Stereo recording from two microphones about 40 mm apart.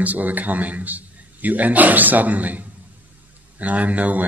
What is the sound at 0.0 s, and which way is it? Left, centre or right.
A man's voice, right.